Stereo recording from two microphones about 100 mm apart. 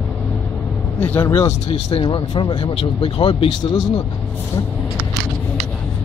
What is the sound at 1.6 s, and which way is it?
Speech, 55° left (ahead or behind).